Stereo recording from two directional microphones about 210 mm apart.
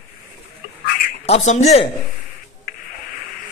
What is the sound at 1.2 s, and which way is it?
Speech, 30° left (ahead or behind).